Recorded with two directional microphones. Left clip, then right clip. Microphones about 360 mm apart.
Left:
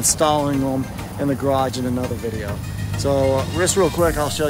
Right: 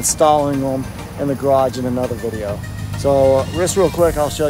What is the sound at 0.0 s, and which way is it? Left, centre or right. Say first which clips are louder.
Speech: right 4 dB; centre.